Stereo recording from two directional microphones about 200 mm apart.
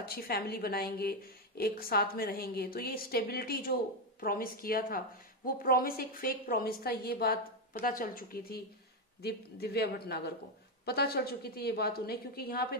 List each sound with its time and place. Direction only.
0.0 s a woman's voice: 50° left (ahead or behind)